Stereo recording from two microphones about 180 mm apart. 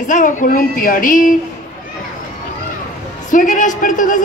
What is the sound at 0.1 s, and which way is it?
A woman's voice, 45° left (ahead or behind).